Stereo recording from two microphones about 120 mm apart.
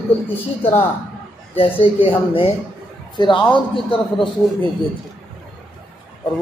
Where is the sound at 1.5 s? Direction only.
50° left (ahead or behind).